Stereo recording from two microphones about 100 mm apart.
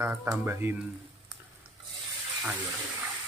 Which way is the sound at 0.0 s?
25° right (ahead or behind).